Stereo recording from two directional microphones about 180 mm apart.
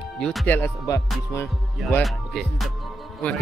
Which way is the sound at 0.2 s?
Centre (ahead or behind).